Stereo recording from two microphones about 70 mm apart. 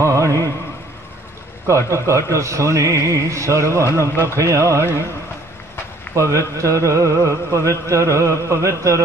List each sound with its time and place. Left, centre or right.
0.0 s music: right
1.7 s speech: right
6.1 s speech: right